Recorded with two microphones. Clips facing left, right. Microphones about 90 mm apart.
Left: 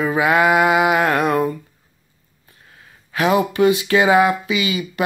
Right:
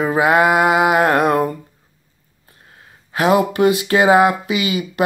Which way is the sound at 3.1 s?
45° right (ahead or behind).